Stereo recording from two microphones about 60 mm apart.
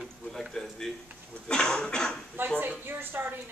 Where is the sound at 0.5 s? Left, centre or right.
Centre.